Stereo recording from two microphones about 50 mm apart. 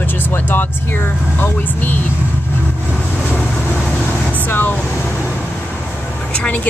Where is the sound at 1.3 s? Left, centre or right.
Left.